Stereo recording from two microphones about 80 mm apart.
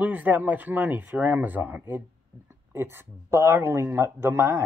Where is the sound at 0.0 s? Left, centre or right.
Right.